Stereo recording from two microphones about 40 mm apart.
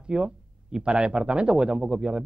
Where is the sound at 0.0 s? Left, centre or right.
Right.